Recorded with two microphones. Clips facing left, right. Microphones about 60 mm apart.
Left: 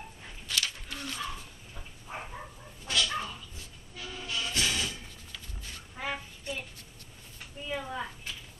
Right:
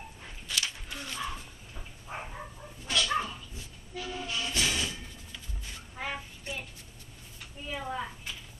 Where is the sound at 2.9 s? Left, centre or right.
Right.